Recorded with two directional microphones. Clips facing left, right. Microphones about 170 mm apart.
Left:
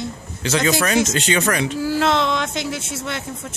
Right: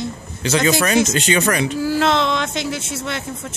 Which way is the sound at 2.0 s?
75° right (ahead or behind).